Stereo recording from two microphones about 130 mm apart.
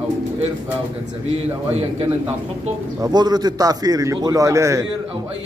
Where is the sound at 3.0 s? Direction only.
30° right (ahead or behind).